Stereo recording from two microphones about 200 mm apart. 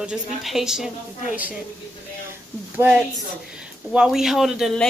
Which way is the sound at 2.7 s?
10° right (ahead or behind).